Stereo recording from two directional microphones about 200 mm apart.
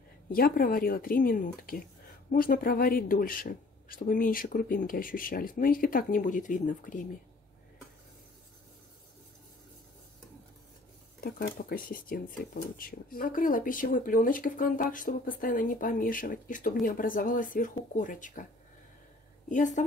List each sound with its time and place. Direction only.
0.3 s speech: 45° left (ahead or behind)
11.1 s speech: 50° left (ahead or behind)
19.5 s speech: 40° left (ahead or behind)